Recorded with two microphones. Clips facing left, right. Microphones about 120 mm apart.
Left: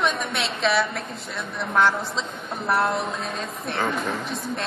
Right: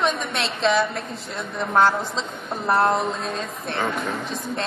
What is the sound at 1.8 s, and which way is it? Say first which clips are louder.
A man's voice: right 2 dB; 35° right (ahead or behind).